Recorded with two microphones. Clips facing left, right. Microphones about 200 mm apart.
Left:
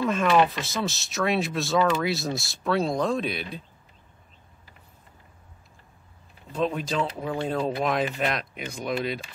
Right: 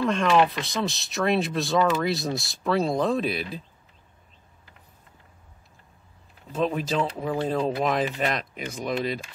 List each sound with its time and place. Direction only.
0.0 s speech: 5° left (ahead or behind)
6.5 s speech: centre (ahead or behind)